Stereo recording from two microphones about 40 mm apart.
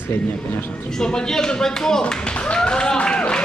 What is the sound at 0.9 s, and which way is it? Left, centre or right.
Clapping, centre.